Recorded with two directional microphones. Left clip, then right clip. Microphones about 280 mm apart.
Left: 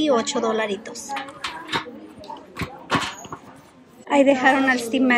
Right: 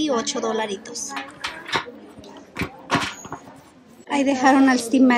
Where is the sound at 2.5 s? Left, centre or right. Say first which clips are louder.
Right 1 dB; centre.